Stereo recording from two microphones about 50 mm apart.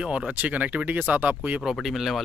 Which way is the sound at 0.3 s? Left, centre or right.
Right.